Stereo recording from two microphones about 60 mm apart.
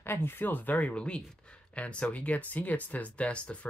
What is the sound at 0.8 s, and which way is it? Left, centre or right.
Speech, centre.